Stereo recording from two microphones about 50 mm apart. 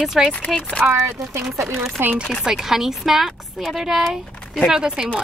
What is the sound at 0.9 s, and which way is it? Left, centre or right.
Speech, right.